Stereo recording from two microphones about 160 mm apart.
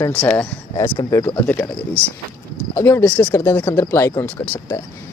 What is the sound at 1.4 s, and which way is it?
Speech, 10° left (ahead or behind).